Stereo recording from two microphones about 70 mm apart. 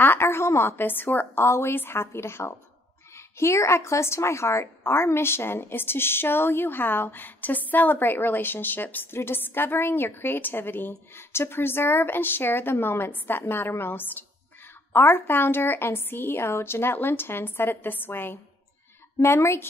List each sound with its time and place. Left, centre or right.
0.0 s a woman's voice: left